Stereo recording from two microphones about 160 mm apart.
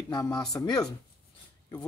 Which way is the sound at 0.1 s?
20° left (ahead or behind).